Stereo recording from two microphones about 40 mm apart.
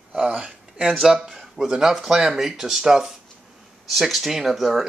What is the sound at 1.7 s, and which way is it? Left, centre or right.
Speech, centre.